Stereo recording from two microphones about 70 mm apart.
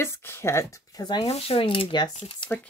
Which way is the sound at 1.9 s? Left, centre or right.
Left.